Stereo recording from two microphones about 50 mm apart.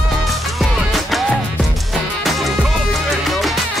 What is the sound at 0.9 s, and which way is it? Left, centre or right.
Music, centre.